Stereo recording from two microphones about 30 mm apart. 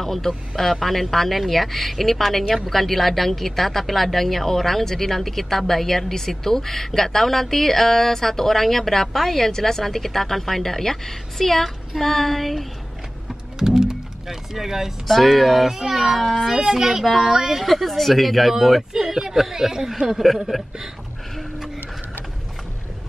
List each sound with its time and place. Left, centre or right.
0.0 s speech: centre
13.6 s music: centre
15.0 s speech: centre
15.9 s speech: centre
16.2 s speech: centre
16.4 s speech: centre
17.6 s speech: centre
18.9 s speech: centre